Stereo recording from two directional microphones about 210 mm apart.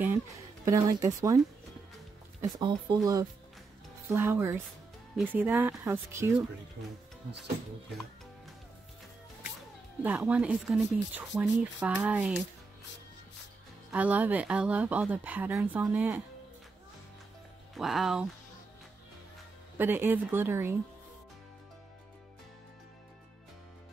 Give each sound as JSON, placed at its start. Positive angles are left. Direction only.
{"t": 0.7, "sound": "speech", "side_deg": -15}
{"t": 2.4, "sound": "speech", "side_deg": -20}
{"t": 4.1, "sound": "speech", "side_deg": -10}
{"t": 10.0, "sound": "speech", "side_deg": -5}
{"t": 13.9, "sound": "speech", "side_deg": -5}
{"t": 17.7, "sound": "speech", "side_deg": 0}
{"t": 19.8, "sound": "speech", "side_deg": -10}